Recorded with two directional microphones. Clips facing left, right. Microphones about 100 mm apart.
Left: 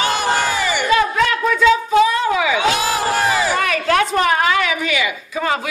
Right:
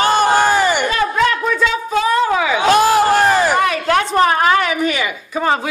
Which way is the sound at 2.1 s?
40° right (ahead or behind).